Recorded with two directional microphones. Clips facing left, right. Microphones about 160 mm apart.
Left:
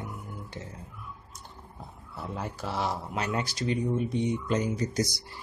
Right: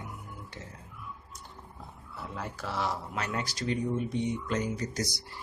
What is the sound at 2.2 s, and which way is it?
A man's voice, 25° left (ahead or behind).